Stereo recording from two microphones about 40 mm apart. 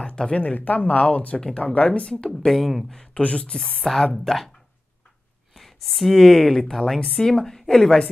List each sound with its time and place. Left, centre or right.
0.0 s a sound: left
0.6 s speech: left
1.8 s speech: left
2.5 s speech: centre
3.2 s speech: left
3.5 s speech: centre
5.5 s speech: centre